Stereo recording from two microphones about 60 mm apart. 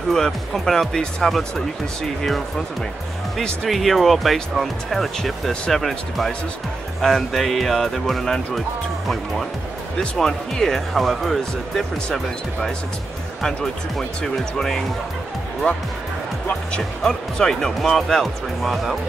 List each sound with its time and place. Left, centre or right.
0.1 s speech: centre
3.6 s speech: centre
9.9 s speech: centre
13.4 s speech: centre
15.7 s speech: centre